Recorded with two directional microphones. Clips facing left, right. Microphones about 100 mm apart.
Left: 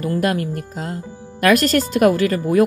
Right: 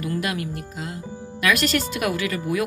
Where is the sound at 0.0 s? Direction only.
40° left (ahead or behind).